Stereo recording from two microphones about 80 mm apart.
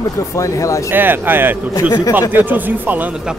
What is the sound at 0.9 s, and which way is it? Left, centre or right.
Speech, right.